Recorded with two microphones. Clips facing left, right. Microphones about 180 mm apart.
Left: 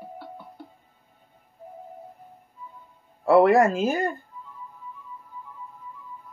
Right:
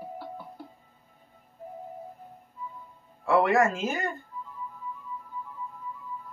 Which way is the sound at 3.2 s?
35° left (ahead or behind).